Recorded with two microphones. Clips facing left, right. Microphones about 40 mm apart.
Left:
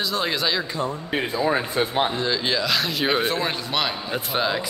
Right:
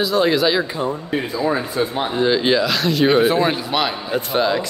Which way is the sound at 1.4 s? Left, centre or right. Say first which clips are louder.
Right 2 dB; left.